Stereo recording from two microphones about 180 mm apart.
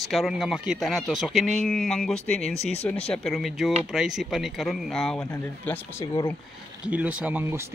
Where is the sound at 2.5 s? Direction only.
35° left (ahead or behind).